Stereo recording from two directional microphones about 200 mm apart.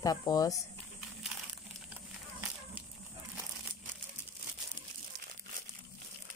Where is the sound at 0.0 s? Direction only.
20° left (ahead or behind).